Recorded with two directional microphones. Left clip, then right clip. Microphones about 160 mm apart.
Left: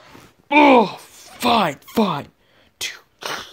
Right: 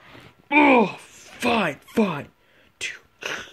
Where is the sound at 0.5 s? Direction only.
35° left (ahead or behind).